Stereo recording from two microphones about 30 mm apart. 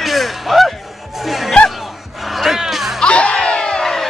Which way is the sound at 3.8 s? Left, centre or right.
Centre.